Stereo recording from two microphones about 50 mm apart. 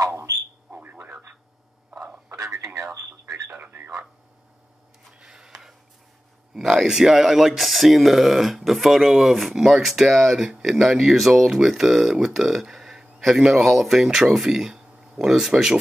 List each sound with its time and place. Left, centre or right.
0.7 s a sound: right
0.9 s radio: right
2.3 s radio: right
3.6 s radio: right
5.2 s a sound: centre
6.5 s speech: centre